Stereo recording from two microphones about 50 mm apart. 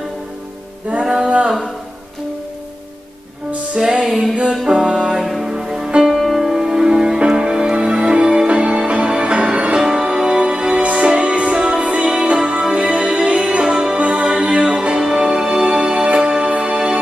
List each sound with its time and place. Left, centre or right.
1.0 s a sound: centre
4.0 s music: centre; by 13.4 s right
13.7 s music: centre
13.9 s music: right